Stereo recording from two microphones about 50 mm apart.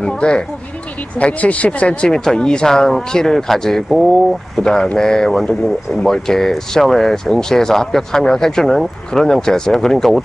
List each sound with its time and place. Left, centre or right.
0.0 s a sound: centre
1.1 s speech: left
2.0 s speech: centre